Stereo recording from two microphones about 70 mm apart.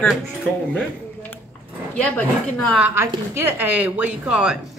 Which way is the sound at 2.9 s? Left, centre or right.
Right.